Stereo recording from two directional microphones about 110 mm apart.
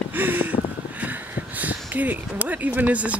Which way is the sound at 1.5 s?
15° right (ahead or behind).